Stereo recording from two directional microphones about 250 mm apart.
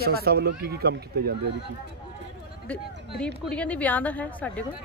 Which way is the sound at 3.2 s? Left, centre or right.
Centre.